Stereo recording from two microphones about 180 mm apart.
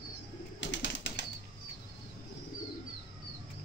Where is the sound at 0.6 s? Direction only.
85° left.